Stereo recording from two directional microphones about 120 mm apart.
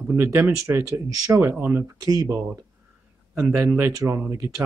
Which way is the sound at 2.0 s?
30° right (ahead or behind).